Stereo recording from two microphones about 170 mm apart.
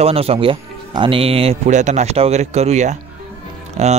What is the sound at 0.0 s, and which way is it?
Speech, 35° right (ahead or behind).